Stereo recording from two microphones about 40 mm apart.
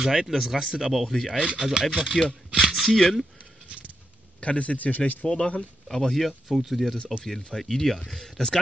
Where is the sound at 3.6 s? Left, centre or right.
Right.